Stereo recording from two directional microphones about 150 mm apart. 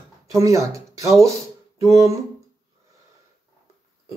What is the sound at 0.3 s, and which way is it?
Speech, 20° right (ahead or behind).